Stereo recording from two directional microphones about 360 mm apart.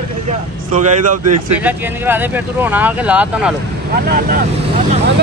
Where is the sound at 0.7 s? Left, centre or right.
Right.